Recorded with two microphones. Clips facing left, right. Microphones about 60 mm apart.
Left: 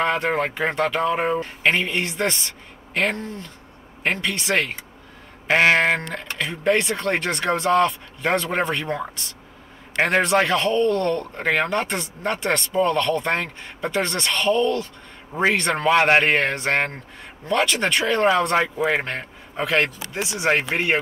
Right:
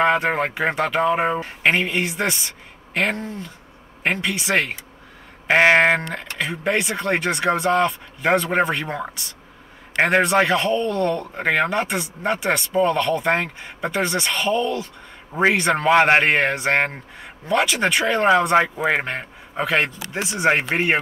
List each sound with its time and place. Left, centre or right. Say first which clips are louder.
0.0 s speech: right 3 dB; centre
5.5 s a man's voice: right 2 dB; centre
20.2 s speech: right 1 dB; right
20.7 s speech: right 2 dB; centre